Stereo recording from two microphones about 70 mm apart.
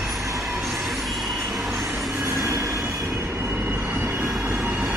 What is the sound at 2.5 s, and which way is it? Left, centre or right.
Train, right.